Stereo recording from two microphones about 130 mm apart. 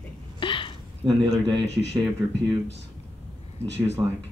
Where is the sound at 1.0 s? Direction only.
5° right (ahead or behind).